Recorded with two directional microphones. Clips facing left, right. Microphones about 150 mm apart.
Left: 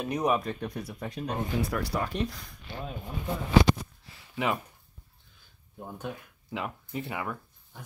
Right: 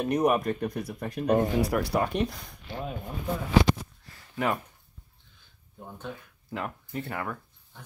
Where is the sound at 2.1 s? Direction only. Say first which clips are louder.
Right 3 dB; 60° right (ahead or behind).